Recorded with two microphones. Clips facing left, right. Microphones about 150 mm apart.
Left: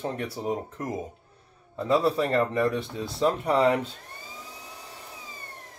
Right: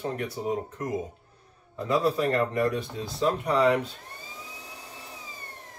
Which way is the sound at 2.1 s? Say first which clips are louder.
Left 1 dB; 25° left (ahead or behind).